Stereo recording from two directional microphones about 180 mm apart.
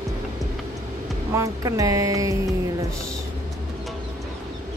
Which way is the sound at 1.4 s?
20° right (ahead or behind).